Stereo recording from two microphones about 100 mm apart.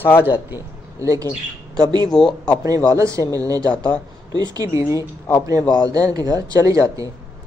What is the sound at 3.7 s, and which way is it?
Speech, 10° left (ahead or behind).